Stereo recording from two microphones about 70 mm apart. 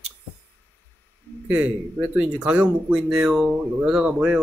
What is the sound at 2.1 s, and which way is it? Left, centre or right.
Speech, centre.